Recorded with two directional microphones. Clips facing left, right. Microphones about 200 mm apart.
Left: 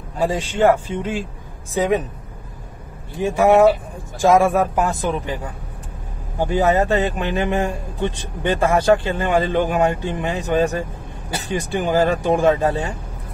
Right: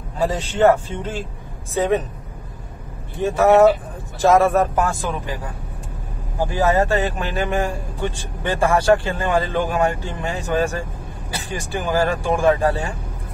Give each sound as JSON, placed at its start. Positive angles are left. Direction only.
{"t": 0.2, "sound": "a man's voice", "side_deg": 10}
{"t": 3.2, "sound": "a man's voice", "side_deg": 15}
{"t": 6.5, "sound": "speech", "side_deg": 20}